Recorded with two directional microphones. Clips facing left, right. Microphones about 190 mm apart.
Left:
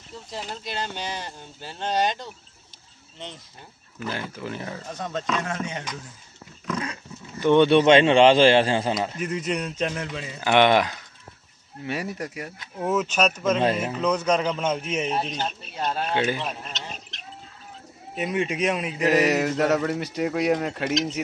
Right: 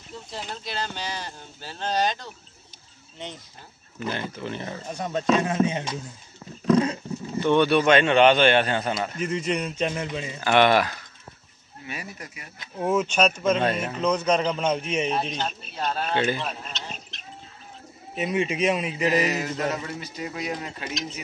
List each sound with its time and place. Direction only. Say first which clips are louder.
0.3 s speech: left 1 dB; 10° left (ahead or behind)
4.1 s a man's voice: right 1 dB; 5° left (ahead or behind)
4.8 s speech: right 6 dB; 15° right (ahead or behind)
6.6 s dog: right 10 dB; 30° right (ahead or behind)
7.3 s a man's voice: left 3 dB; 15° left (ahead or behind)
9.2 s a man's voice: right 1 dB; centre (ahead or behind)
10.4 s speech: left 1 dB; 15° left (ahead or behind)
11.8 s speech: left 8 dB; 65° left (ahead or behind)
12.7 s a man's voice: right 1 dB; centre (ahead or behind)
18.1 s a man's voice: even; centre (ahead or behind)
19.0 s speech: left 4 dB; 75° left (ahead or behind)